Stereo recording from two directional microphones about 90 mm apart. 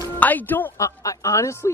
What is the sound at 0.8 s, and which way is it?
Speech, 35° left (ahead or behind).